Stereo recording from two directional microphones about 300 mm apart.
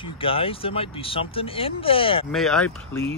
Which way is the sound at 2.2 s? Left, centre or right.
Centre.